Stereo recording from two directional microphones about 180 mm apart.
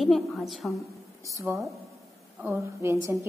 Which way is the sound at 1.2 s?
15° right (ahead or behind).